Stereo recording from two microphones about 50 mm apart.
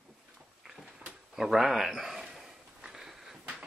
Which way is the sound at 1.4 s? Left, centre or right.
Centre.